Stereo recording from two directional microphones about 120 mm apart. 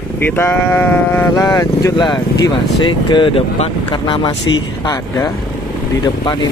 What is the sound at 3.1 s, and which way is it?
Speech, 45° left (ahead or behind).